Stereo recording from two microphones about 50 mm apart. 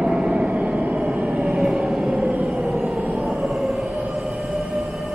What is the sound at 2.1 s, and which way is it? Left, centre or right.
Vehicle, right.